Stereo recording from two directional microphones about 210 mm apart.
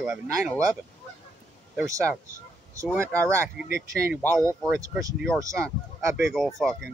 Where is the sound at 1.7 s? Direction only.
15° right (ahead or behind).